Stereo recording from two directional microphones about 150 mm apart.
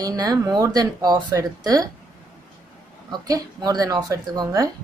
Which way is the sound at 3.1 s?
25° right (ahead or behind).